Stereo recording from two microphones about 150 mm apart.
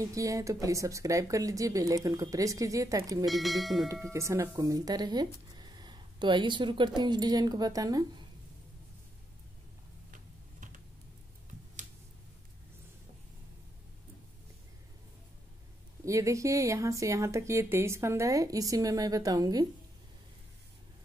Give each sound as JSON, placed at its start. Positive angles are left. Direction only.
{"t": 0.0, "sound": "speech", "side_deg": -20}
{"t": 3.3, "sound": "speech", "side_deg": 0}
{"t": 3.9, "sound": "speech", "side_deg": -20}
{"t": 10.1, "sound": "a sound", "side_deg": -60}
{"t": 16.1, "sound": "speech", "side_deg": -20}